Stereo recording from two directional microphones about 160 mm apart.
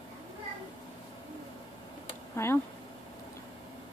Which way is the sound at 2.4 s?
15° left (ahead or behind).